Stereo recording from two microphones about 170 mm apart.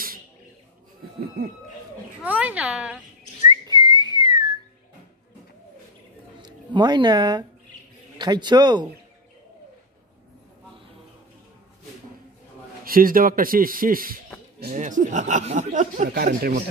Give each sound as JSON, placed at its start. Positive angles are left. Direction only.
{"t": 2.2, "sound": "a woman's voice", "side_deg": -10}
{"t": 3.4, "sound": "whistling", "side_deg": -25}
{"t": 6.4, "sound": "speech", "side_deg": -25}
{"t": 12.8, "sound": "a man's voice", "side_deg": -55}